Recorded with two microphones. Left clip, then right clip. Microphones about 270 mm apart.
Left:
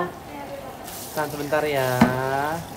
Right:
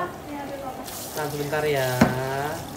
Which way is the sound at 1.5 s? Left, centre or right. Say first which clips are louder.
Left 2 dB; centre.